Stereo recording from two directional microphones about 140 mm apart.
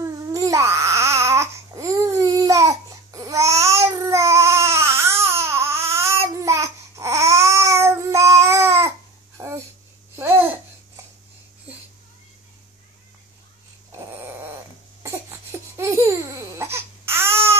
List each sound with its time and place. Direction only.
0.0 s baby cry: 25° right (ahead or behind)
9.4 s a sound: 20° right (ahead or behind)
10.1 s babbling: 15° right (ahead or behind)
15.0 s laughter: 20° right (ahead or behind)